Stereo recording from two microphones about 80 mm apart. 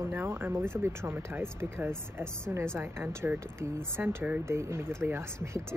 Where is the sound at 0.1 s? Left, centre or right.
Right.